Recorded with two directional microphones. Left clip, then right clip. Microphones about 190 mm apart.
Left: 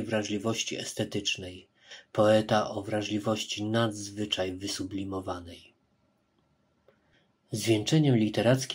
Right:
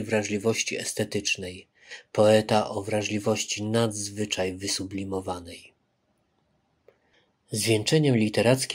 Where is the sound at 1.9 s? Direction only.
35° right (ahead or behind).